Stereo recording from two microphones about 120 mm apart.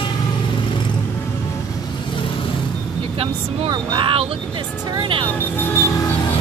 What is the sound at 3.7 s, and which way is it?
Speech, 40° right (ahead or behind).